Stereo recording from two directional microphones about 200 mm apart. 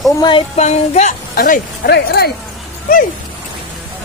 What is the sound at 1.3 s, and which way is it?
Speech, 45° left (ahead or behind).